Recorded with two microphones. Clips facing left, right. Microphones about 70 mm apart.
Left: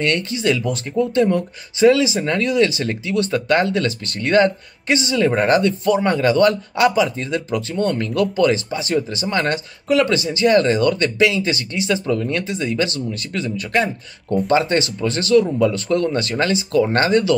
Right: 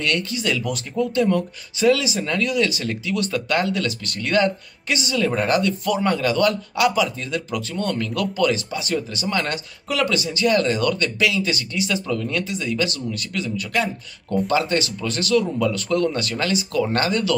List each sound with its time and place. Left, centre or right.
0.0 s speech: left